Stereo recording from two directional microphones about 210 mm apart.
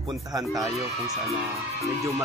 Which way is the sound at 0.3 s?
15° right (ahead or behind).